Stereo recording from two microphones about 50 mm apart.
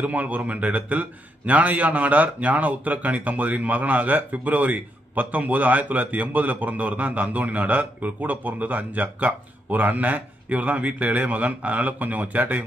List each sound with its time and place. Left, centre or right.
0.0 s a man's voice: right